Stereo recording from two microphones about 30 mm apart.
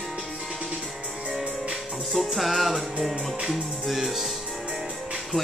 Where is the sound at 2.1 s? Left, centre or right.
Centre.